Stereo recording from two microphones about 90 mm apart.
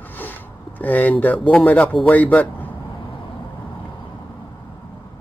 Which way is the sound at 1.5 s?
15° left (ahead or behind).